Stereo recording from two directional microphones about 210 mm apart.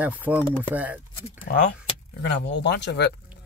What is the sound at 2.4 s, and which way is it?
Speech, 55° left (ahead or behind).